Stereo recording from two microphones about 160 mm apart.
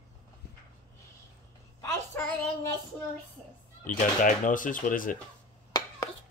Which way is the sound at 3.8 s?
55° left (ahead or behind).